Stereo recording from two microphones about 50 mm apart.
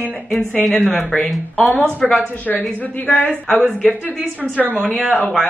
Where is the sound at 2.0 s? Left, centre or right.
Centre.